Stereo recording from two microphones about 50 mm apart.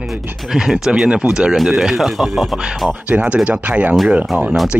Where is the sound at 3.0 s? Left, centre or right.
Right.